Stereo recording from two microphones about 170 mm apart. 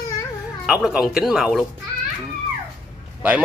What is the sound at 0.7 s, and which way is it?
Speech, 5° right (ahead or behind).